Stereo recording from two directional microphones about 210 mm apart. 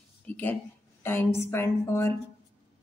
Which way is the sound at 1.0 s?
10° left (ahead or behind).